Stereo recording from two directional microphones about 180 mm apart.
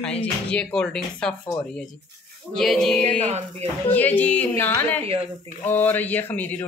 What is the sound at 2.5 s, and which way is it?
Speech, centre (ahead or behind).